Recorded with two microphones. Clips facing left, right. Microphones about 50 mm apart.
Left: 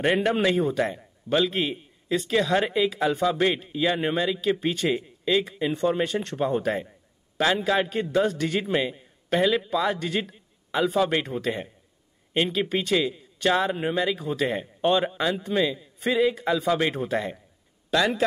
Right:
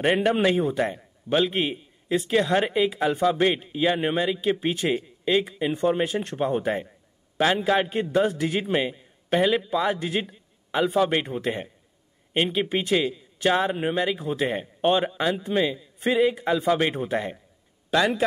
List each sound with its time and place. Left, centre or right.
0.0 s a man's voice: centre